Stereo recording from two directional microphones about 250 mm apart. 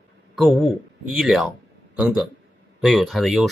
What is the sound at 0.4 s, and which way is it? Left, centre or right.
A man's voice, centre.